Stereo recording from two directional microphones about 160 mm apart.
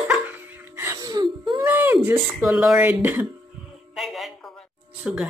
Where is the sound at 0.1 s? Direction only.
15° right (ahead or behind).